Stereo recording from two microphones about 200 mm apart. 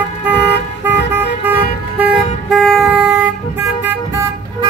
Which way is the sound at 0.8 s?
10° right (ahead or behind).